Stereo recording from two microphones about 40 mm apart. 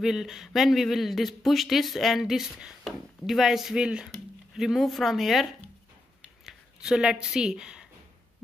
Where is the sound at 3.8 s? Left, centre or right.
Right.